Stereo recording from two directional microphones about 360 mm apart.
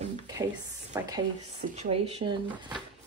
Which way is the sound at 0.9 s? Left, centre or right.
Centre.